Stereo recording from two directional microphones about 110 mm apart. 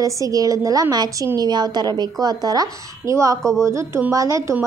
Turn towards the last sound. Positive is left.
turn(degrees=-30)  # may be behind; listen again after turning